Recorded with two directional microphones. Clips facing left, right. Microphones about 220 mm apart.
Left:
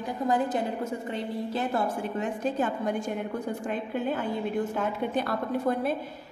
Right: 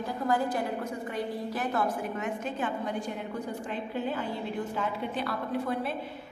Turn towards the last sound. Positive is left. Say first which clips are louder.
# left 4 dB
turn(degrees=45)  # may be behind; listen again after turning